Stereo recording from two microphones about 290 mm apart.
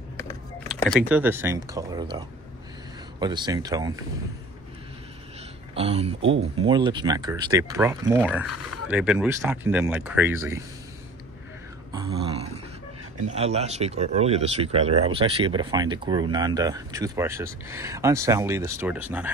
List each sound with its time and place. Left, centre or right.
0.7 s speech: centre
5.8 s speech: right
6.2 s speech: right
6.6 s speech: centre
8.5 s speech: left
8.8 s speech: centre
11.9 s a sound: centre
13.3 s speech: right; by 19.3 s centre